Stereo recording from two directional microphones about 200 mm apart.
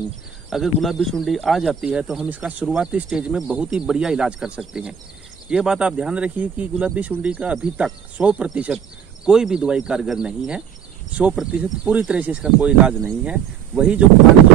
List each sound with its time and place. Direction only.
0.5 s speech: centre (ahead or behind)